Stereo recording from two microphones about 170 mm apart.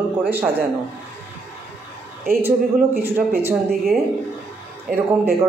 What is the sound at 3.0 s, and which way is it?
Speech, 10° right (ahead or behind).